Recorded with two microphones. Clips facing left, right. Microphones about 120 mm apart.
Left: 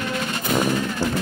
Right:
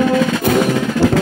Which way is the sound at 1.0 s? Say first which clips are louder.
Right 12 dB; 85° right.